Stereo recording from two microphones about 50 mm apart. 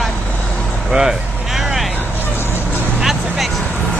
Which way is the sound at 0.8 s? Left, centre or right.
Centre.